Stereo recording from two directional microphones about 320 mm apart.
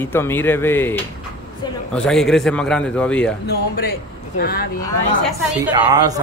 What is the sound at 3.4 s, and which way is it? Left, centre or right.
Speech, left.